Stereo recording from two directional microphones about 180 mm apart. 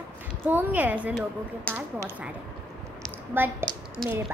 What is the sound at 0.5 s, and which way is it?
Speech, 10° right (ahead or behind).